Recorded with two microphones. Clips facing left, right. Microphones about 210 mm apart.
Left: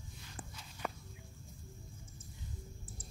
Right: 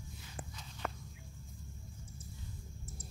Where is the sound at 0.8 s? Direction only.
5° left (ahead or behind).